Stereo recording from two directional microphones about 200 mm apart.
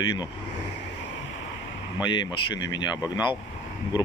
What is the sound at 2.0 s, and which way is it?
Speech, 20° left (ahead or behind).